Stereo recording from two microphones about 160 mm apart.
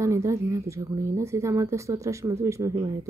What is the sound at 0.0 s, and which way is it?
A woman's voice, 20° right (ahead or behind).